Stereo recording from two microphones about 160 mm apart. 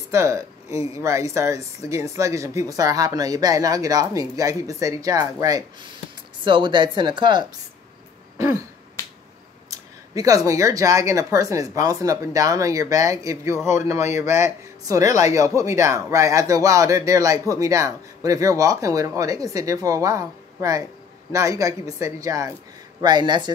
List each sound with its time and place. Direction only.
0.1 s speech: 20° right (ahead or behind)
9.0 s finger snapping: 20° left (ahead or behind)
9.7 s speech: 20° right (ahead or behind)